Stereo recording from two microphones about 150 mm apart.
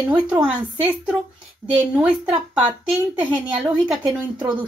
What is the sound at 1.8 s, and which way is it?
A woman's voice, 10° right (ahead or behind).